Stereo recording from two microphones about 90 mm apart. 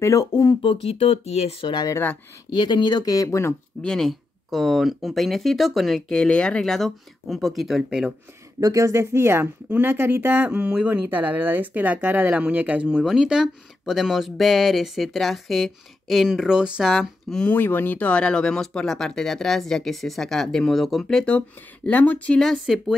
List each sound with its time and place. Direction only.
0.0 s speech: 35° left (ahead or behind)
0.3 s speech: 50° left (ahead or behind)
0.7 s speech: 90° left
1.7 s speech: 50° left (ahead or behind); by 3.5 s 30° left (ahead or behind)
3.8 s speech: 5° left (ahead or behind)
8.5 s speech: 35° right (ahead or behind)
10.5 s speech: 10° right (ahead or behind)
16.9 s speech: 5° left (ahead or behind)
17.5 s speech: 20° left (ahead or behind)
22.4 s speech: centre (ahead or behind)